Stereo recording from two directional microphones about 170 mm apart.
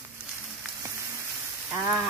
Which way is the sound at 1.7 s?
15° right (ahead or behind).